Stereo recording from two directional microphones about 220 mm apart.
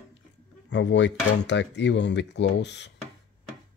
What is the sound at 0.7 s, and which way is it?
Dishes, 55° left (ahead or behind).